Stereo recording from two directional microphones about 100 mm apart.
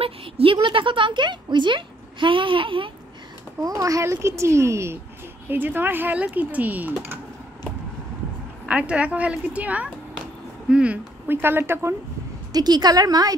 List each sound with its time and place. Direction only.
0.0 s speech: 70° right (ahead or behind)
3.6 s a child's voice: 35° right (ahead or behind); by 7.2 s 20° right (ahead or behind)
8.6 s a woman's voice: 10° right (ahead or behind)
12.5 s a woman's voice: 40° right (ahead or behind)